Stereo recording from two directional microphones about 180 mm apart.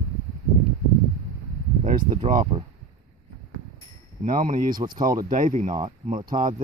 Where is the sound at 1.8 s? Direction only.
40° right (ahead or behind).